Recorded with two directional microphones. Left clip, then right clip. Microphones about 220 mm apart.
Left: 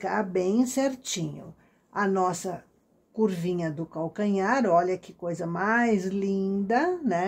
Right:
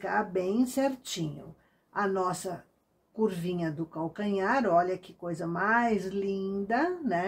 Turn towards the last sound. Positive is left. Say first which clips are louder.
# left 3 dB
turn(degrees=35)  # may be behind; listen again after turning